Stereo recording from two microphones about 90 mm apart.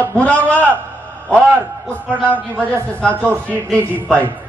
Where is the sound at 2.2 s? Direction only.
15° left (ahead or behind).